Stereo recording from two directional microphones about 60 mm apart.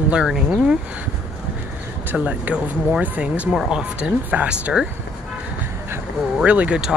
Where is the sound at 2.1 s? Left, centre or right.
Right.